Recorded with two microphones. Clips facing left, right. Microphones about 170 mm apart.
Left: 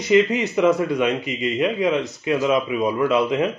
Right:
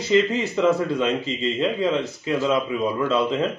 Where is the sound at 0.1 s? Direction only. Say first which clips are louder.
Left 3 dB; 15° left (ahead or behind).